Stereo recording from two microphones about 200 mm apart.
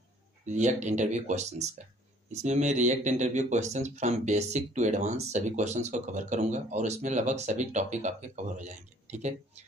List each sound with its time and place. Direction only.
0.5 s speech: 35° right (ahead or behind)